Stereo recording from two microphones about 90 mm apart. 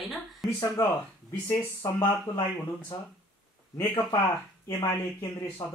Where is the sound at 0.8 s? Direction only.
25° left (ahead or behind).